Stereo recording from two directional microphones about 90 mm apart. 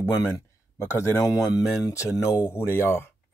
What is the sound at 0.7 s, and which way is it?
Speech, 30° left (ahead or behind).